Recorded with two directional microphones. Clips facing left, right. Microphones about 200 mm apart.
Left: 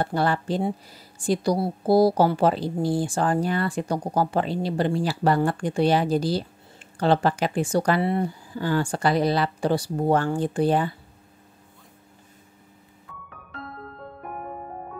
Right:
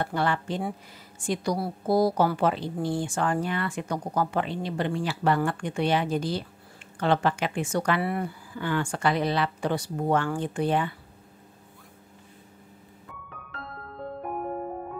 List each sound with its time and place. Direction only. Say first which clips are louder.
0.0 s a woman's voice: left 3 dB; 35° left (ahead or behind)